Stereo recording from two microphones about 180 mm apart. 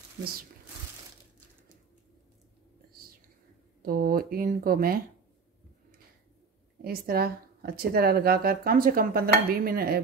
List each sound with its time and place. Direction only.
3.8 s speech: 55° right (ahead or behind)
6.8 s speech: 55° right (ahead or behind)